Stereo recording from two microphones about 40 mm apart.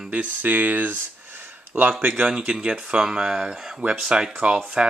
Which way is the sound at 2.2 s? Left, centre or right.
Centre.